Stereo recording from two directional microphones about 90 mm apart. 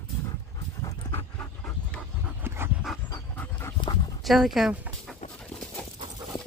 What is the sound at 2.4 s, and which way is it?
Dog, 25° right (ahead or behind).